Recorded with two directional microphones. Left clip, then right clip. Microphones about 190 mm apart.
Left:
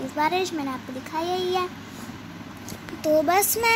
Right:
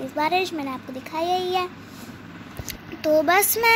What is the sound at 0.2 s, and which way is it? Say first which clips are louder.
A child's voice: right 1 dB; 20° right (ahead or behind).